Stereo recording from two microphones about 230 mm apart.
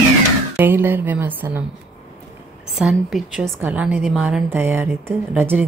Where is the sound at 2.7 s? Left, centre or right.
Centre.